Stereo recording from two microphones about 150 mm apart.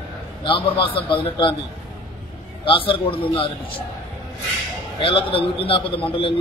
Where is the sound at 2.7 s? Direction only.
35° left (ahead or behind).